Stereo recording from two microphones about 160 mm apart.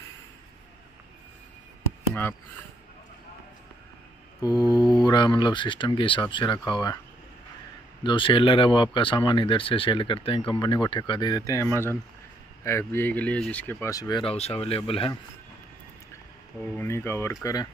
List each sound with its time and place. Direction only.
4.4 s speech: 25° left (ahead or behind)
8.0 s speech: 30° left (ahead or behind)
14.2 s speech: 40° left (ahead or behind)
16.5 s speech: 15° left (ahead or behind)